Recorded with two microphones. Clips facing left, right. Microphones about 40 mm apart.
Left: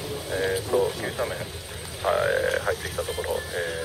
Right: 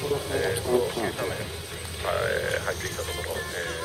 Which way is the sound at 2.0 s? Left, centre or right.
Centre.